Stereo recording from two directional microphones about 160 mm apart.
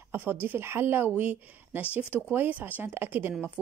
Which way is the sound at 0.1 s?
15° right (ahead or behind).